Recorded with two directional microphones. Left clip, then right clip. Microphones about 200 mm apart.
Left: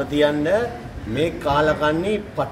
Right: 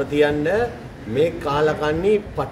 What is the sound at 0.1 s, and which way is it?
A man's voice, 5° right (ahead or behind).